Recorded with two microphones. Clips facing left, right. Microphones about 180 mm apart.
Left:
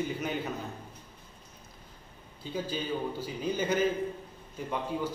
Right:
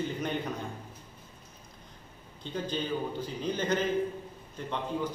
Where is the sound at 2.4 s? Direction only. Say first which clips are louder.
Right 1 dB; 5° left (ahead or behind).